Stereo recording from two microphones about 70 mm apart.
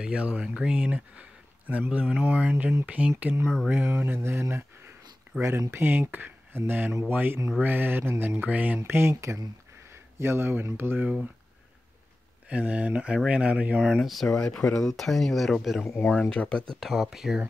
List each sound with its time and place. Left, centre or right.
0.0 s speech: centre
0.7 s mantra: right
1.7 s speech: centre
2.2 s mantra: right
3.4 s speech: centre
3.7 s speech: right
7.6 s mantra: right
8.8 s speech: right
9.1 s speech: right
12.4 s speech: centre
13.8 s speech: centre
16.1 s speech: centre
16.8 s speech: centre